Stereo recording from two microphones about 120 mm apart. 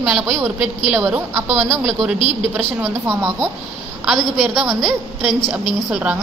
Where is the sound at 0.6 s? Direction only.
5° right (ahead or behind).